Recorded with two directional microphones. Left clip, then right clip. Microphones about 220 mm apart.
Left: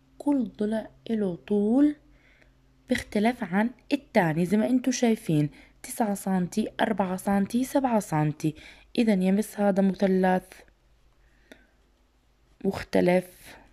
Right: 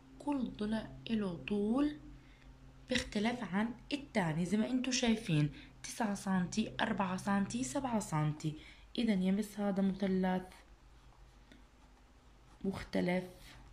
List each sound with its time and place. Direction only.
0.2 s a woman's voice: 30° left (ahead or behind)
11.5 s tick: 40° left (ahead or behind)
12.6 s speech: 40° left (ahead or behind)